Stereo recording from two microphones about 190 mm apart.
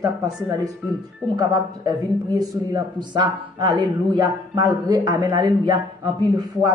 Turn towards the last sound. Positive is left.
turn(degrees=-20)  # may be behind; listen again after turning